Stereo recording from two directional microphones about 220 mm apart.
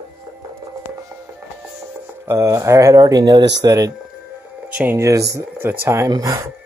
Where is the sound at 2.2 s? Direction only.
15° right (ahead or behind).